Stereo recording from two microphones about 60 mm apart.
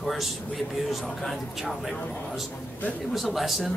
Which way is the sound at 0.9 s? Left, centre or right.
Centre.